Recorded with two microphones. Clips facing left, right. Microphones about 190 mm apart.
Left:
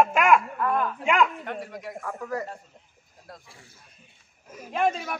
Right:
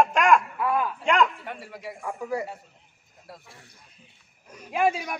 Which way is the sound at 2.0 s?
10° right (ahead or behind).